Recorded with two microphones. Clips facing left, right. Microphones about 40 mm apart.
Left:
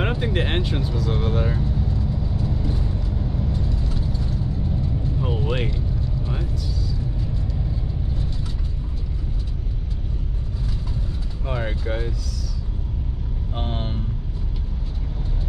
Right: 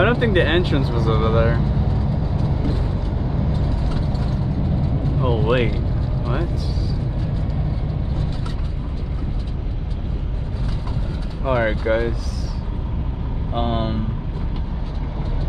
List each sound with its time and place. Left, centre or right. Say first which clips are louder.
0.0 s speech: right 7 dB; right
1.8 s vehicle: right 3 dB; right
3.8 s vehicle: right 4 dB; right
5.2 s speech: right 8 dB; right
11.4 s speech: right 9 dB; right
13.5 s vehicle: right 8 dB; right